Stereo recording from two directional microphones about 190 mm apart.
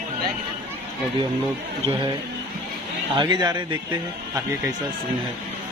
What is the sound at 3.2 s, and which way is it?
Speech, 20° right (ahead or behind).